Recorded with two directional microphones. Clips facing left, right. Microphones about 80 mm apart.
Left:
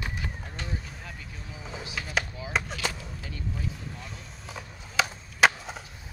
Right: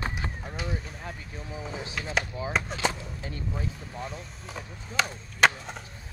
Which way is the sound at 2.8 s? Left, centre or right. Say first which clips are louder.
Right 4 dB; right.